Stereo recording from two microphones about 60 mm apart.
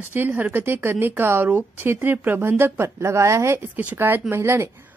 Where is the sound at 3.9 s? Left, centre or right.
Right.